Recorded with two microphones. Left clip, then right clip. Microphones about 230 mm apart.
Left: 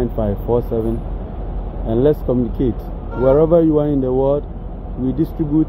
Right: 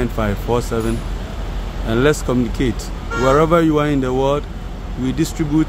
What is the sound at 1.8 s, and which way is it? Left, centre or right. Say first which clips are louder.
Speech: left 1 dB; right.